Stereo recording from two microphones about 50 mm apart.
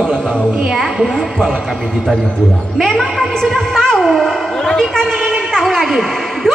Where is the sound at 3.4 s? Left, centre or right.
Centre.